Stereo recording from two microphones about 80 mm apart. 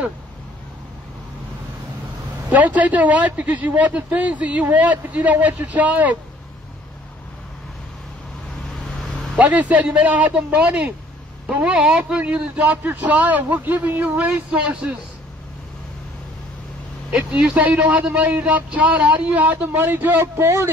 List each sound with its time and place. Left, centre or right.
2.5 s speech: centre
9.4 s speech: centre
17.1 s speech: centre; by 20.7 s right